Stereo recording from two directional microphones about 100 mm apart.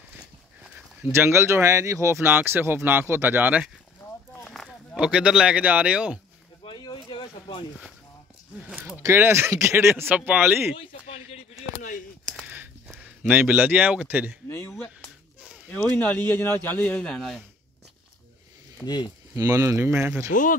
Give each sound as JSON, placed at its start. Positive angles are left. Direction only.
{"t": 1.1, "sound": "speech", "side_deg": -25}
{"t": 4.0, "sound": "a sound", "side_deg": 20}
{"t": 4.5, "sound": "a sound", "side_deg": 5}
{"t": 4.9, "sound": "speech", "side_deg": -10}
{"t": 6.6, "sound": "a sound", "side_deg": 50}
{"t": 9.0, "sound": "speech", "side_deg": -25}
{"t": 10.1, "sound": "speech", "side_deg": -15}
{"t": 13.0, "sound": "speech", "side_deg": -15}
{"t": 14.5, "sound": "speech", "side_deg": 25}
{"t": 18.8, "sound": "speech", "side_deg": 15}
{"t": 19.3, "sound": "speech", "side_deg": -30}